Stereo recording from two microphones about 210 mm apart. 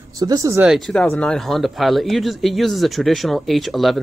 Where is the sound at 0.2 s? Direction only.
15° right (ahead or behind).